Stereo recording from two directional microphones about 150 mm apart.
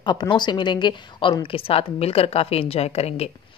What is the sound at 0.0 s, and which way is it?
A woman's voice, 30° left (ahead or behind).